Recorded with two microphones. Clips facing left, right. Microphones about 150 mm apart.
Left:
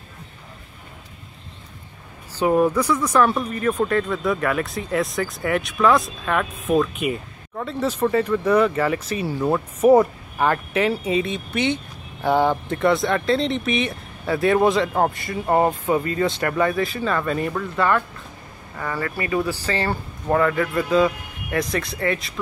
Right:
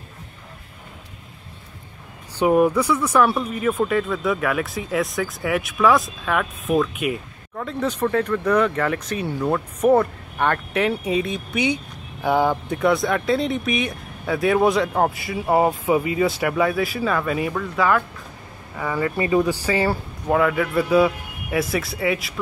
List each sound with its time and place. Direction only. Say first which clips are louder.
2.3 s speech: right 1 dB; 15° right (ahead or behind)
19.6 s speech: right 3 dB; 10° right (ahead or behind)